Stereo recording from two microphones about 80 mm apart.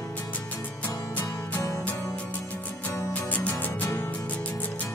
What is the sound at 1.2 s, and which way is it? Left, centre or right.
Music, left.